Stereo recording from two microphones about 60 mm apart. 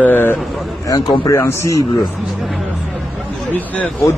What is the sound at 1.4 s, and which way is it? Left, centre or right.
Speech, left.